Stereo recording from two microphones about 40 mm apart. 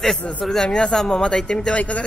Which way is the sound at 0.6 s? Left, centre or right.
Left.